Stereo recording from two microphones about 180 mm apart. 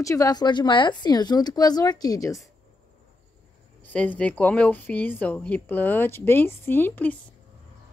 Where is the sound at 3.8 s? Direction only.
10° left (ahead or behind).